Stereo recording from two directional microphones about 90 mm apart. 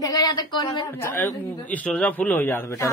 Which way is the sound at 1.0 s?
25° left (ahead or behind).